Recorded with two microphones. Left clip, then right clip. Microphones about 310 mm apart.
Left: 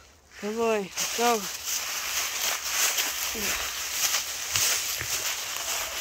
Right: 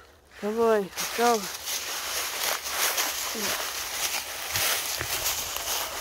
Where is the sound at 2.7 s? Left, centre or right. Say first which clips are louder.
Left 1 dB; centre.